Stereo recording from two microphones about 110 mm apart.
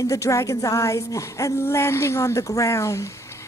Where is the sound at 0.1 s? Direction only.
30° left (ahead or behind).